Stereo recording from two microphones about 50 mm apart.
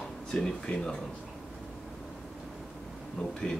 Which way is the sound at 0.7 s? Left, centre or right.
Left.